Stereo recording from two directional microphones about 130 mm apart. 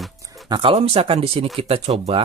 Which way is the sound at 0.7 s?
50° right (ahead or behind).